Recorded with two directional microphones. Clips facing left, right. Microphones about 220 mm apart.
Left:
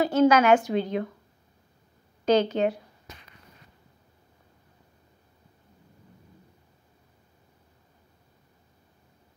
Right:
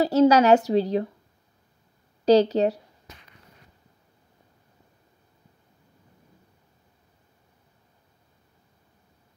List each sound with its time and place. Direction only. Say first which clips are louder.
0.0 s a woman's voice: right 2 dB; 35° right (ahead or behind)
2.2 s a woman's voice: right 4 dB; 35° right (ahead or behind)